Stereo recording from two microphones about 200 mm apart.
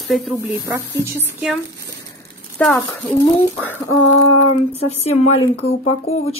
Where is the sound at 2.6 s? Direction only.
5° left (ahead or behind).